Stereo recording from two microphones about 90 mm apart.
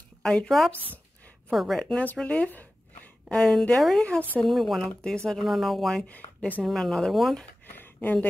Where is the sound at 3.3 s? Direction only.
5° left (ahead or behind).